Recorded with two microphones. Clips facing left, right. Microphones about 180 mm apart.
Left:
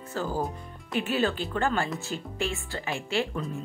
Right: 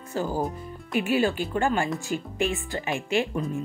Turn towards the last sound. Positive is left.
turn(degrees=-15)  # may be behind; listen again after turning